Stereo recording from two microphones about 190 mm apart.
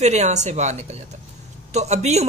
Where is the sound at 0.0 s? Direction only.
35° right (ahead or behind).